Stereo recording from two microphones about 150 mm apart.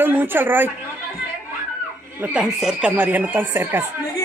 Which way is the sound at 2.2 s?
5° right (ahead or behind).